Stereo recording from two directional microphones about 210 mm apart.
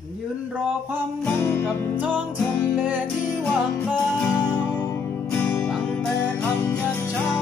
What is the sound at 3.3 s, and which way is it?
Music, 5° left (ahead or behind).